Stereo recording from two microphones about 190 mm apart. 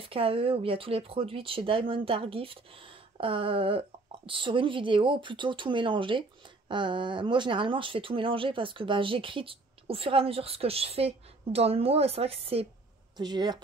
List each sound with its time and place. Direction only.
0.0 s speech: 30° right (ahead or behind)